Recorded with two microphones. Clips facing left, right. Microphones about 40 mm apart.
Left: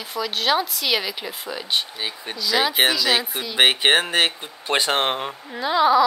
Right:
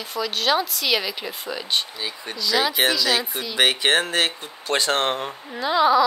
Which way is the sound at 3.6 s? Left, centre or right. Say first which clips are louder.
Left 2 dB; left.